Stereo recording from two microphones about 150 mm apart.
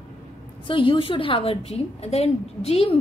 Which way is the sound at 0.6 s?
35° left (ahead or behind).